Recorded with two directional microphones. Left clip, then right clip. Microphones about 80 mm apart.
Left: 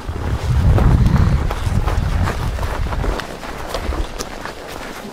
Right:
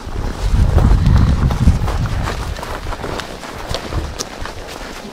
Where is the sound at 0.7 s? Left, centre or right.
Centre.